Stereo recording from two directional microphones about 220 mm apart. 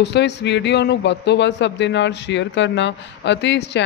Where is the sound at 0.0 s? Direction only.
50° left (ahead or behind).